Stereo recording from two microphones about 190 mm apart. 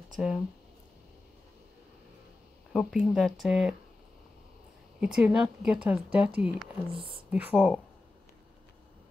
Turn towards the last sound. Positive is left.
turn(degrees=-5)  # may be behind; listen again after turning